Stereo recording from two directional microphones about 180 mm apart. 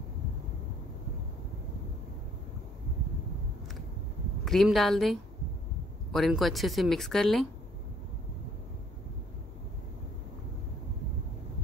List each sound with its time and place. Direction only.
4.5 s speech: centre (ahead or behind)